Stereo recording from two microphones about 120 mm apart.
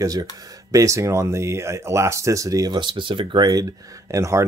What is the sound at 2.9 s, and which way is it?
Speech, 45° right (ahead or behind).